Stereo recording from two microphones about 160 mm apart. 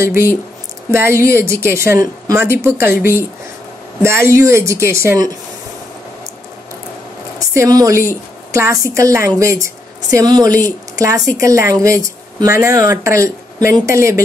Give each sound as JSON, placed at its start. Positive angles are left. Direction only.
{"t": 0.0, "sound": "a woman's voice", "side_deg": -15}
{"t": 7.3, "sound": "a woman's voice", "side_deg": -20}